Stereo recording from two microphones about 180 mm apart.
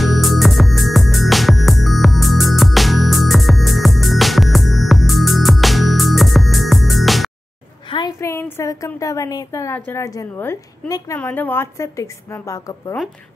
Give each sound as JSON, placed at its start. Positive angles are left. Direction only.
{"t": 0.0, "sound": "music", "side_deg": 0}
{"t": 7.9, "sound": "a woman's voice", "side_deg": 20}